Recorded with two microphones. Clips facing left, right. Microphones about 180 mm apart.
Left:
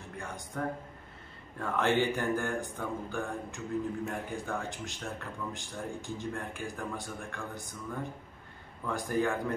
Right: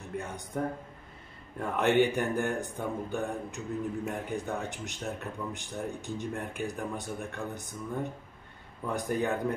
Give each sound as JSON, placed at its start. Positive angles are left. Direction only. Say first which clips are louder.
{"t": 0.5, "sound": "mantra", "louder": "right 2 dB", "side_deg": -20}